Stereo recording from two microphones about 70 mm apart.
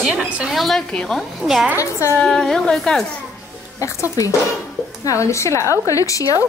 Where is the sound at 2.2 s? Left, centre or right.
Centre.